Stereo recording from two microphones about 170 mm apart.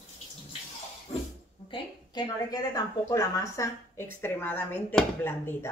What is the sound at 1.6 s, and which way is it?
A woman's voice, 25° left (ahead or behind).